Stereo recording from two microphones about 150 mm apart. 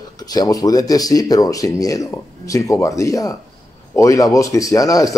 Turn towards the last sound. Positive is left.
turn(degrees=25)  # may be behind; listen again after turning